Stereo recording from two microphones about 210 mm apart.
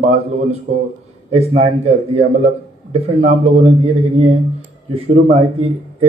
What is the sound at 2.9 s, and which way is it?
Speech, 30° right (ahead or behind).